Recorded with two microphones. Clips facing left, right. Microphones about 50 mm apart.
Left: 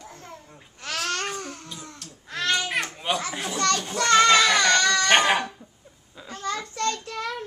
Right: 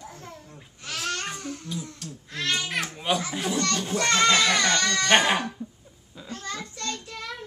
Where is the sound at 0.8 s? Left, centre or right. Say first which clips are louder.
Left 3 dB; left.